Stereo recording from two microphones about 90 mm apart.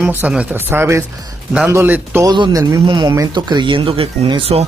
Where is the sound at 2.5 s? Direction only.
40° right (ahead or behind).